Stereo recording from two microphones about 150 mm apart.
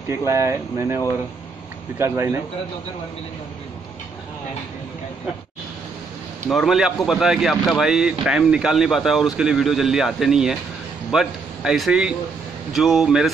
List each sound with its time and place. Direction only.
0.2 s speech: 20° right (ahead or behind)
6.5 s speech: centre (ahead or behind)